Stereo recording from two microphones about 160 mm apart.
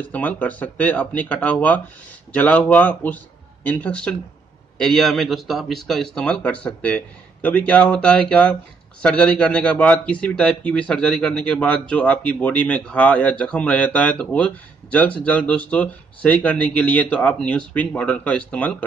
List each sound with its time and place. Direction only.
0.0 s a man's voice: 10° left (ahead or behind)